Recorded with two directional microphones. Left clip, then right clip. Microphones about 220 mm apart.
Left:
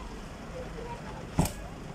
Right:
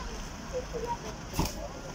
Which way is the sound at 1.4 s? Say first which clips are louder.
Left 2 dB; 40° left (ahead or behind).